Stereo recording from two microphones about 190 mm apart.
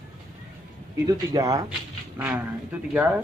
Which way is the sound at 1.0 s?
20° right (ahead or behind).